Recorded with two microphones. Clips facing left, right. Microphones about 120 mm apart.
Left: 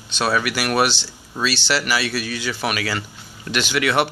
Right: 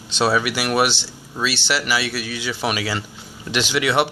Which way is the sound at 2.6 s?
25° right (ahead or behind).